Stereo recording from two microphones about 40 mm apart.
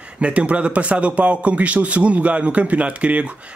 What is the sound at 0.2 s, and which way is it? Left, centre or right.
Speech, right.